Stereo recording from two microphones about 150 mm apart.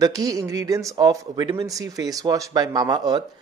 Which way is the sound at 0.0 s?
25° right (ahead or behind).